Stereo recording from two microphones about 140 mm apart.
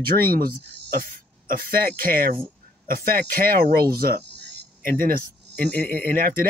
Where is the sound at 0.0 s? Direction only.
90° right.